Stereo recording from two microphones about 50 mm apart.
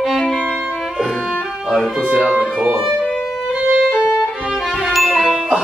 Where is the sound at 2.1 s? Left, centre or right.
Centre.